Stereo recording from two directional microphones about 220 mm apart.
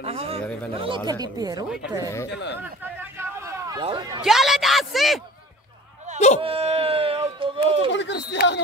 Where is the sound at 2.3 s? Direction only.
50° left (ahead or behind).